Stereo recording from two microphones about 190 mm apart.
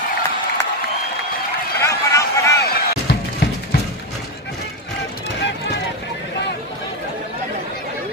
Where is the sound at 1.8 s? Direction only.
15° left (ahead or behind).